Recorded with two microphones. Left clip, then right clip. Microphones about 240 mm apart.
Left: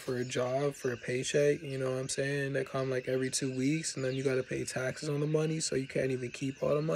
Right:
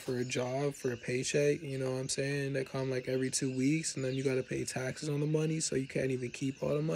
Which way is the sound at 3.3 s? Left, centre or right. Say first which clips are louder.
Even; centre.